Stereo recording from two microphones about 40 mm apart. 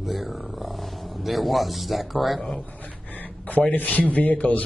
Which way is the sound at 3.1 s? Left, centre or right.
Left.